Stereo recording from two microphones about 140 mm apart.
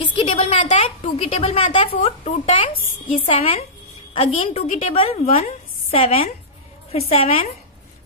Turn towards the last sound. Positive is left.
turn(degrees=45)  # may be behind; listen again after turning